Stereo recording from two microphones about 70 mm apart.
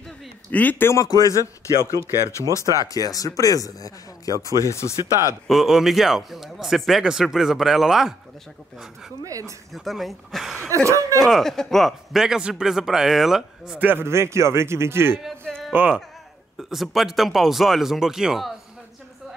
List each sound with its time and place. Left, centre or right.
0.5 s a man's voice: left
1.0 s speech: left
2.8 s speech: left
5.5 s speech: centre
9.2 s speech: right
9.7 s speech: centre
10.7 s speech: right
11.1 s speech: centre
13.7 s a man's voice: right
14.0 s speech: right
15.8 s a man's voice: right
16.5 s speech: centre